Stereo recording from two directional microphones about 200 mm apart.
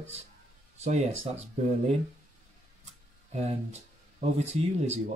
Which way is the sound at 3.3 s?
35° right (ahead or behind).